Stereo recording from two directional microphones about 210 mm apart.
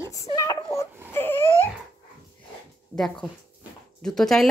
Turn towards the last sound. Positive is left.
turn(degrees=0)  # may be behind; listen again after turning